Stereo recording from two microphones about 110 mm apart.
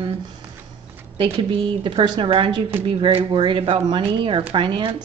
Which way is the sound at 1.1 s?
55° right (ahead or behind).